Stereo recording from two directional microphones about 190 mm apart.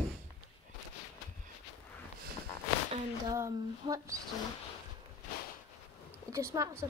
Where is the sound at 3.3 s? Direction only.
15° right (ahead or behind).